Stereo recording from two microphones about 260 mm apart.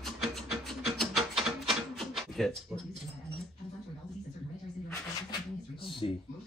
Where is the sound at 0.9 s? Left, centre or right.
Centre.